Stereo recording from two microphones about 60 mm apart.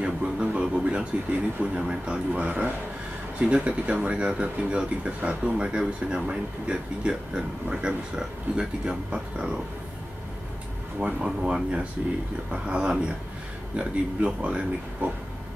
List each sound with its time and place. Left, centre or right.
0.0 s a sound: centre
1.6 s speech: centre
11.0 s speech: centre
12.0 s speech: right
12.4 s speech: centre